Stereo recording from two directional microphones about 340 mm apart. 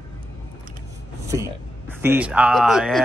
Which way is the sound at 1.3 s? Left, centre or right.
Centre.